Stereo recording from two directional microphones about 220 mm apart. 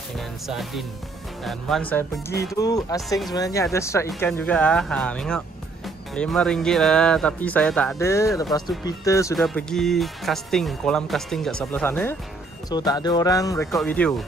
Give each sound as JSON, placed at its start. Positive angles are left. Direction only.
{"t": 0.5, "sound": "speech", "side_deg": 0}
{"t": 9.4, "sound": "speech", "side_deg": 0}
{"t": 13.7, "sound": "speech", "side_deg": 5}